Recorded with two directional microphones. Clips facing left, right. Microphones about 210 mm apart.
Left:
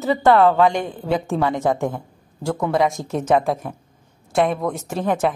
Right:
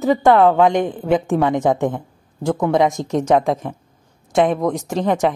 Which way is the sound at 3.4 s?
Centre (ahead or behind).